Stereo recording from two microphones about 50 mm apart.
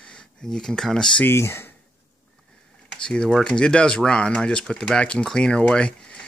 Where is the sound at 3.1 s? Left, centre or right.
Centre.